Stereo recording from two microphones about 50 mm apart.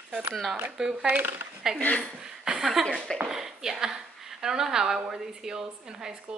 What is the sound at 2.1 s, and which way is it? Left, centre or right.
Chuckle, centre.